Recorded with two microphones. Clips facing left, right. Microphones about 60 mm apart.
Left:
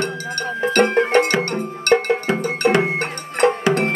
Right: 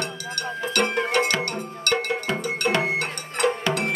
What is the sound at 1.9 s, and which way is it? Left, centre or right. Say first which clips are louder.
Cowbell: left 6 dB; left.